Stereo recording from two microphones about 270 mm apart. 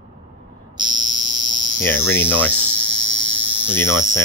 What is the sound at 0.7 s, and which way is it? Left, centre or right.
Fire alarm, centre.